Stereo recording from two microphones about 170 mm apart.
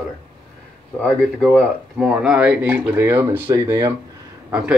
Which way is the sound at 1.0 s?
5° left (ahead or behind).